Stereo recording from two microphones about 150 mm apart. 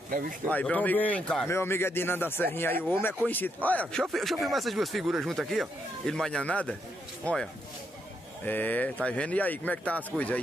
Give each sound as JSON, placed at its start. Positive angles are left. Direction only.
{"t": 0.1, "sound": "speech", "side_deg": -65}
{"t": 0.5, "sound": "speech", "side_deg": 10}
{"t": 1.5, "sound": "speech", "side_deg": 15}
{"t": 8.5, "sound": "speech", "side_deg": 10}